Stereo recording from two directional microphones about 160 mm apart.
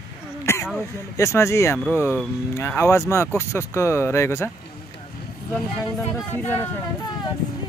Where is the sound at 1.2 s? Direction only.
15° left (ahead or behind).